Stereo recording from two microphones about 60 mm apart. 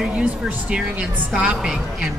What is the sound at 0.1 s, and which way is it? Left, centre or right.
A woman's voice, right.